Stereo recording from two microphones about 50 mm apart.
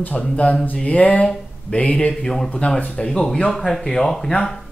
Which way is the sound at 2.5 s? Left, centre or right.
Left.